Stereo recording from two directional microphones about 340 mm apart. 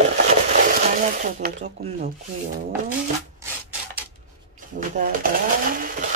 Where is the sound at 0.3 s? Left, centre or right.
Right.